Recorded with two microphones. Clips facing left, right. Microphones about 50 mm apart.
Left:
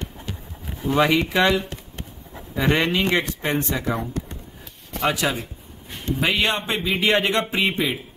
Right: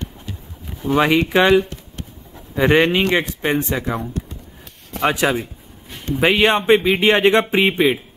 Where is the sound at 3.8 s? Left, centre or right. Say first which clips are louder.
Right 1 dB; right.